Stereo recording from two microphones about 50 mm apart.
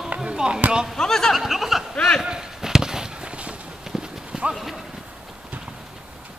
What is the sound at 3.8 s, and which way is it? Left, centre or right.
Clip-clop, centre.